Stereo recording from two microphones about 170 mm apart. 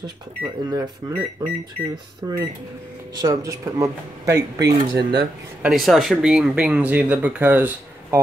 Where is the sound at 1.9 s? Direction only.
25° right (ahead or behind).